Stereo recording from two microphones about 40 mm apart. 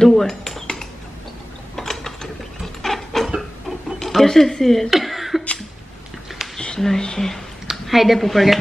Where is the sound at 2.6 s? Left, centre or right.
Centre.